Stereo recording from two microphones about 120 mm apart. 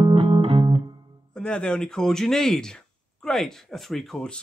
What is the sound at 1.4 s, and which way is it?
Speech, 5° left (ahead or behind).